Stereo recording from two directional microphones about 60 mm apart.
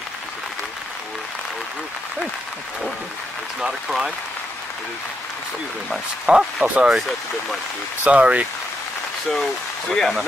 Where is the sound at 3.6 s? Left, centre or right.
Centre.